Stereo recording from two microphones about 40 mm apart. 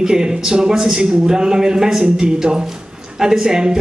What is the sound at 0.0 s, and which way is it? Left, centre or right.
Speech, centre.